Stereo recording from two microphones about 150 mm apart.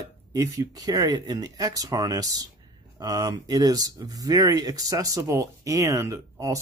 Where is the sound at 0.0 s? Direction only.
25° right (ahead or behind).